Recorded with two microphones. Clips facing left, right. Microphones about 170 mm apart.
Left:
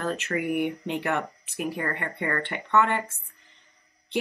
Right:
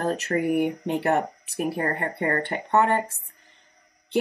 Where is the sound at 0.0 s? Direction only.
40° right (ahead or behind).